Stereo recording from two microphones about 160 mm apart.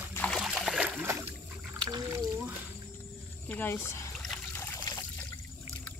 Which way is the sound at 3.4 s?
10° left (ahead or behind).